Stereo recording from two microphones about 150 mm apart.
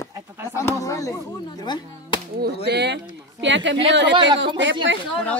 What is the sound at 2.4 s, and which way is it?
Speech, 90° right.